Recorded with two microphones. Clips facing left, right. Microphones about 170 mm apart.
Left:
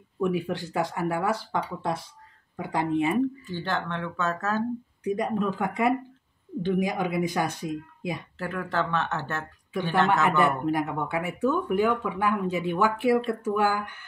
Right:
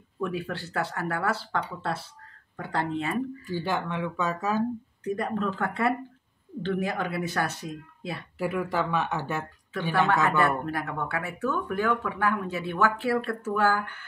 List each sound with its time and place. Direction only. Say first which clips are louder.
0.2 s speech: left 4 dB; 15° left (ahead or behind)
3.4 s speech: right 1 dB; 10° right (ahead or behind)
5.0 s speech: left 2 dB; 10° left (ahead or behind)
8.4 s speech: right 3 dB; 10° right (ahead or behind)
10.2 s speech: left 2 dB; 15° left (ahead or behind)